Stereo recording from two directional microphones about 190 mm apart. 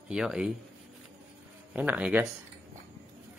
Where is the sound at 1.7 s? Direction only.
10° right (ahead or behind).